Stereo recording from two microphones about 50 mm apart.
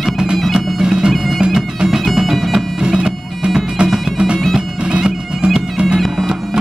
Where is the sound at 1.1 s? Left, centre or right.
Centre.